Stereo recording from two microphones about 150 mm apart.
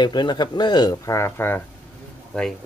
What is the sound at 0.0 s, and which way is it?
Speech, 30° left (ahead or behind).